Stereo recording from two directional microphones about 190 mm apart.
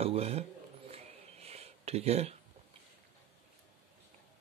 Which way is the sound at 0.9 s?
35° right (ahead or behind).